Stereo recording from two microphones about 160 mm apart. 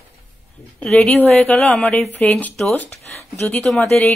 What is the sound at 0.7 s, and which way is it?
A woman's voice, 10° left (ahead or behind).